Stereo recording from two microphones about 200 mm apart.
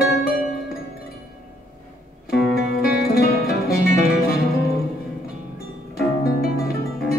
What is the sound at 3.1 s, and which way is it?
Music, 50° left (ahead or behind).